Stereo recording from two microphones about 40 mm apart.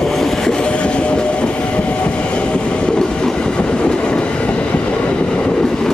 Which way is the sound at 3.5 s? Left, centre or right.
Left.